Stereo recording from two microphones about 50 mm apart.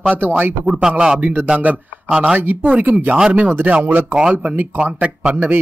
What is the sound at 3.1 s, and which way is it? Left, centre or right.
Speech, right.